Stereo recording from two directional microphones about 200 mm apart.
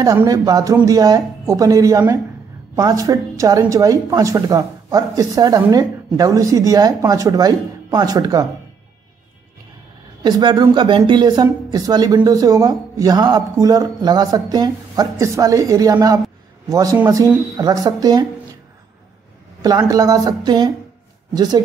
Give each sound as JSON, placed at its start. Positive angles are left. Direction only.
{"t": 0.0, "sound": "speech", "side_deg": -15}
{"t": 10.2, "sound": "speech", "side_deg": -20}
{"t": 19.6, "sound": "speech", "side_deg": -20}